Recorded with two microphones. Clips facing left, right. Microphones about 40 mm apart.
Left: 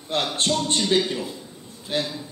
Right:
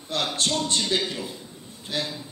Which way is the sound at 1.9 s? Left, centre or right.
Left.